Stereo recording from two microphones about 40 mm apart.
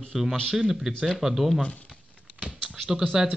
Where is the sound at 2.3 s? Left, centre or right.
Right.